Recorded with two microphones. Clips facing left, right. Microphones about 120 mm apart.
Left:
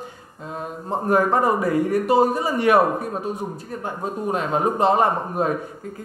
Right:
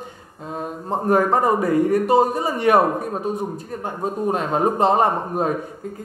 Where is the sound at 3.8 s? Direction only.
35° right (ahead or behind).